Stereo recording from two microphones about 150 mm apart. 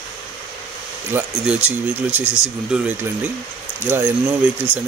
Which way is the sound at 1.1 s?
10° right (ahead or behind).